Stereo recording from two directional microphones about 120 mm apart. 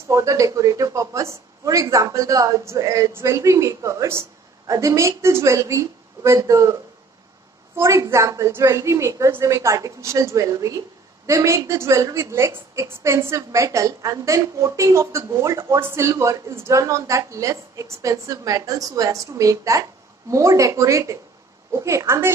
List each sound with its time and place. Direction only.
0.1 s a woman's voice: 25° right (ahead or behind)